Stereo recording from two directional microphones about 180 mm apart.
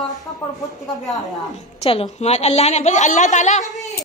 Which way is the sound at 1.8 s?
30° left (ahead or behind).